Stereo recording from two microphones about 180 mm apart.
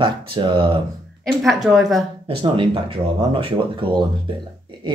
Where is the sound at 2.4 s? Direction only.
25° right (ahead or behind).